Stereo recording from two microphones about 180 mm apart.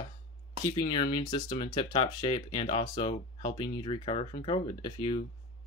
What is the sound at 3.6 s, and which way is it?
Speech, 25° left (ahead or behind).